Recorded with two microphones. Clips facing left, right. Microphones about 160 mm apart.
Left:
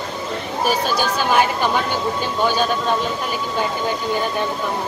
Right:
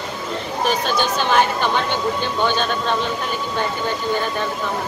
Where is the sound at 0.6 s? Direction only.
10° left (ahead or behind).